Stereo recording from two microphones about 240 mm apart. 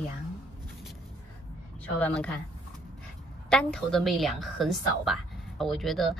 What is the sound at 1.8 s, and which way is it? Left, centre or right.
Speech, centre.